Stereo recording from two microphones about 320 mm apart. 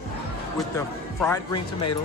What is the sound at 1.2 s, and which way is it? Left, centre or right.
Speech, centre.